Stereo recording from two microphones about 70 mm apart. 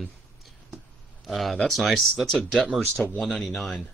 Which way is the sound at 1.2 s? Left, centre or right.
Centre.